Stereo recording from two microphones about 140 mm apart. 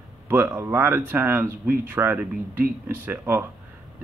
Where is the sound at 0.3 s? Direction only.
15° right (ahead or behind).